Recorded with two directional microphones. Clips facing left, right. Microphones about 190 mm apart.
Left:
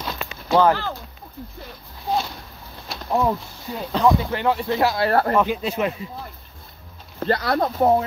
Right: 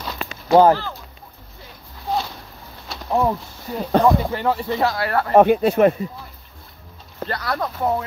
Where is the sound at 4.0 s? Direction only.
55° right (ahead or behind).